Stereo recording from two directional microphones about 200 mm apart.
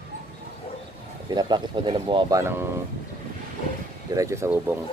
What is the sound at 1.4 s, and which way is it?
Speech, 20° right (ahead or behind).